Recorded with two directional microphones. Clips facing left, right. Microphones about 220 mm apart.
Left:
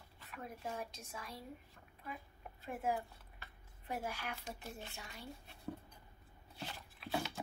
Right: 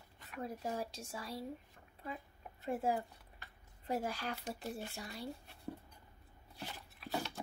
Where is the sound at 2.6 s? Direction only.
30° right (ahead or behind).